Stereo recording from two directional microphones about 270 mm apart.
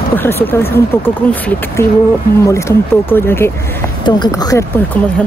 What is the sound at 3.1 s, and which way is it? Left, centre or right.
Speech, centre.